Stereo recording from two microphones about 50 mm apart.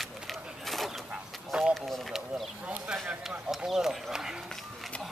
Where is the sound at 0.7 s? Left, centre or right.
Centre.